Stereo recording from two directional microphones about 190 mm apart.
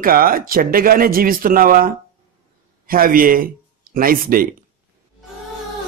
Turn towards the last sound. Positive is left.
turn(degrees=-50)  # may be behind; listen again after turning